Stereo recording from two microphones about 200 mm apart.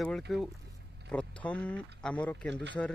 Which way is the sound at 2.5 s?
60° right (ahead or behind).